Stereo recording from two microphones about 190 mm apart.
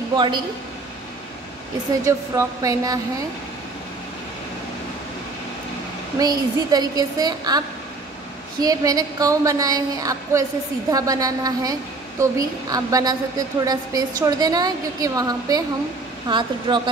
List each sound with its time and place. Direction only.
0.1 s a man's voice: 25° right (ahead or behind)
2.0 s speech: 15° right (ahead or behind)
6.1 s a woman's voice: 20° right (ahead or behind)